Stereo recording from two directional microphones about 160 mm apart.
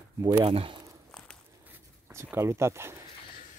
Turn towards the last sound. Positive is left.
turn(degrees=-15)  # may be behind; listen again after turning